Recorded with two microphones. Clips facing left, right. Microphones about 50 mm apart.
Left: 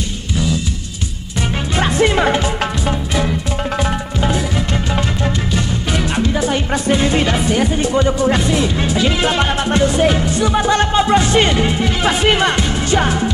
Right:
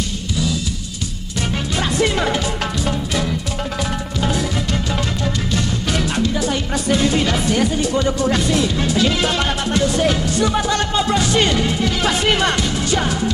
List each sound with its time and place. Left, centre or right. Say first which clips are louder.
1.8 s music: left 5 dB; left
5.5 s music: left 1 dB; centre
6.0 s music: left 4 dB; left
10.6 s speech: left 5 dB; left